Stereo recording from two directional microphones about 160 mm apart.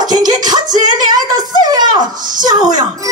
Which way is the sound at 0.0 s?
25° right (ahead or behind).